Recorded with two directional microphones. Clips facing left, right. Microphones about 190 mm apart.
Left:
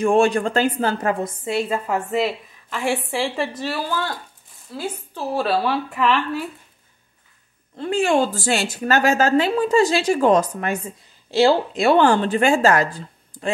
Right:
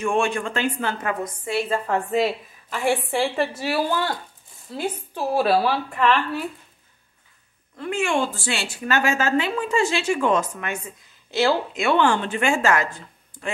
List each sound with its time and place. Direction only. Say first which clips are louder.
0.0 s a woman's voice: left 6 dB; 35° left (ahead or behind)
1.7 s a woman's voice: even; 5° left (ahead or behind)
3.6 s a woman's voice: right 2 dB; 15° right (ahead or behind)
7.7 s a woman's voice: left 5 dB; 30° left (ahead or behind)